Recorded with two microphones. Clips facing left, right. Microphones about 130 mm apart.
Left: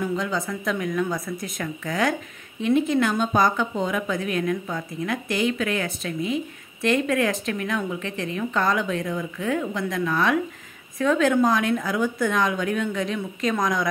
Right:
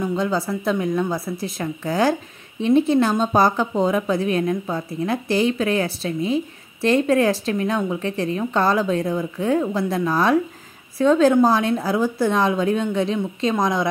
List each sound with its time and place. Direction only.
0.0 s a woman's voice: 30° right (ahead or behind)